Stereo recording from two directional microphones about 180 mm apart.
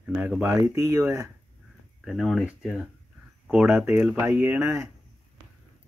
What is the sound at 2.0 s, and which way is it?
Speech, centre (ahead or behind).